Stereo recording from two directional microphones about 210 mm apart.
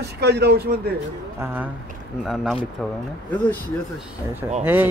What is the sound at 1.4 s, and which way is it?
Speech, 10° right (ahead or behind).